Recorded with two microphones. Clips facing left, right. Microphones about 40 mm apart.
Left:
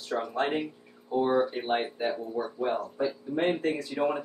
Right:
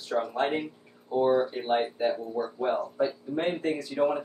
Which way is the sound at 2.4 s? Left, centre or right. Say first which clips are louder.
Right 1 dB; centre.